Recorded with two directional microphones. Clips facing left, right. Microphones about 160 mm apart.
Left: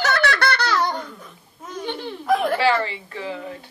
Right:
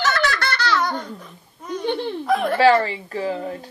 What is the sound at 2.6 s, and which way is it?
Speech, 35° right (ahead or behind).